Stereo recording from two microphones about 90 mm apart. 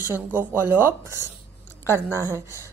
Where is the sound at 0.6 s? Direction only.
25° right (ahead or behind).